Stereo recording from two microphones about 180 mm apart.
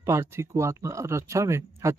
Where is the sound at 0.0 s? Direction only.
15° right (ahead or behind).